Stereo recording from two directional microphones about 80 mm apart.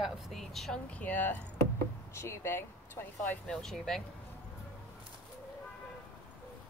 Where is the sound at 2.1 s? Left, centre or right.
Left.